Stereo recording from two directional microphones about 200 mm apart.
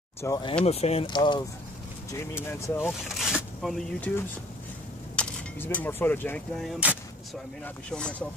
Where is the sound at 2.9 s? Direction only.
Centre (ahead or behind).